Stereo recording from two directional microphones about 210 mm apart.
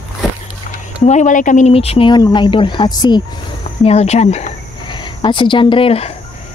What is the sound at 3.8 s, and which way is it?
Speech, 30° left (ahead or behind).